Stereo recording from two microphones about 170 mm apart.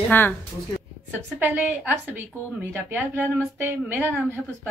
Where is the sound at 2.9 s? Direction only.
10° right (ahead or behind).